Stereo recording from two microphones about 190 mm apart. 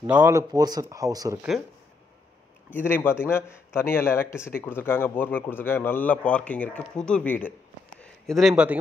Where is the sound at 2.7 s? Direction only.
10° left (ahead or behind).